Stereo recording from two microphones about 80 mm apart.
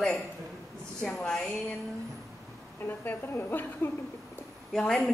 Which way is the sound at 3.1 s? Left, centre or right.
Left.